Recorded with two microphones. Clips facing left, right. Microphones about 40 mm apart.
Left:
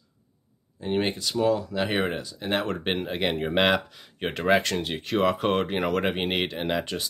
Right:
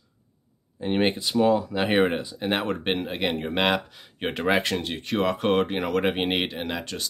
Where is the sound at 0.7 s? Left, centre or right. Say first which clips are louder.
Right 3 dB; right.